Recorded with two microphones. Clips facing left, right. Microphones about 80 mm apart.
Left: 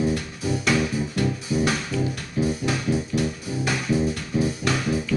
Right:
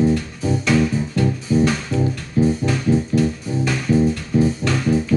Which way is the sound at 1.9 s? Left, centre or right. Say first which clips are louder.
Right 5 dB; right.